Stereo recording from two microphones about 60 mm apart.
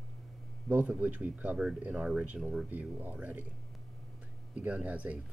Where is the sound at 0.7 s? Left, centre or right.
Right.